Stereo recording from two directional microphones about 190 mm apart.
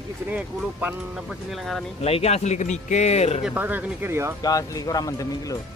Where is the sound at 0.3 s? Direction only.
10° right (ahead or behind).